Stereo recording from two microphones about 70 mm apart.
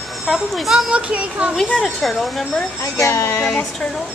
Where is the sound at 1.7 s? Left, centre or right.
Centre.